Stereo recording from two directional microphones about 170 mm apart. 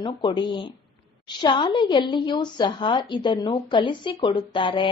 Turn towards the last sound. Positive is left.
turn(degrees=30)  # may be behind; listen again after turning